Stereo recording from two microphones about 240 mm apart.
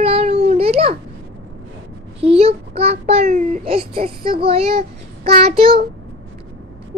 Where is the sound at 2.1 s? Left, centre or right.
Right.